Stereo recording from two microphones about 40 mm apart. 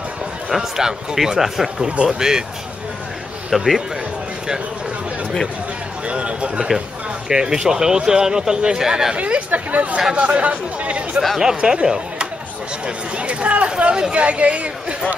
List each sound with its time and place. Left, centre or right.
0.5 s speech: centre
3.4 s a man's voice: centre
6.0 s speech: right
7.2 s speech: centre
9.1 s speech: right
11.3 s speech: centre